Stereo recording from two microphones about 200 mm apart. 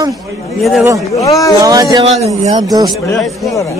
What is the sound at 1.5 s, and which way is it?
Speech, 15° right (ahead or behind).